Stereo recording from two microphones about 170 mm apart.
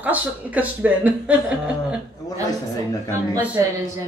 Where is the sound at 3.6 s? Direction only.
20° right (ahead or behind).